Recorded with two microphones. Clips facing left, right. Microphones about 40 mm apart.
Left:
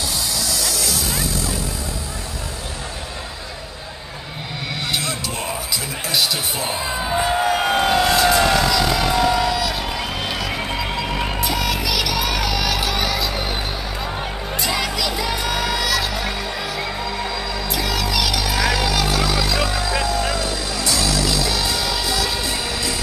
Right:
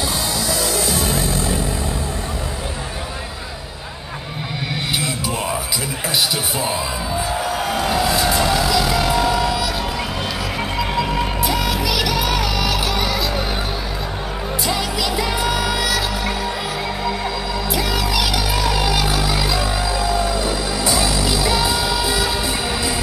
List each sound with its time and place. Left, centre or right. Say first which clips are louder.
0.5 s music: right 3 dB; right
7.1 s music: left 5 dB; left
7.9 s vehicle: left 2 dB; centre
11.4 s music: right 1 dB; centre
14.6 s music: even; centre